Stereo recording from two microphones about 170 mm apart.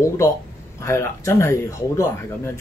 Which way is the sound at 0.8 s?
15° left (ahead or behind).